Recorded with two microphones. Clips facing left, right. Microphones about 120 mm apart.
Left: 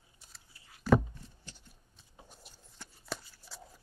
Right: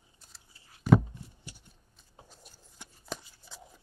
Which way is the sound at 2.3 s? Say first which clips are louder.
Even; centre (ahead or behind).